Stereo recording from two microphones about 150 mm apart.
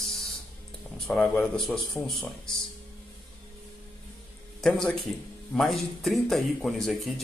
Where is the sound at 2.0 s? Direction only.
20° right (ahead or behind).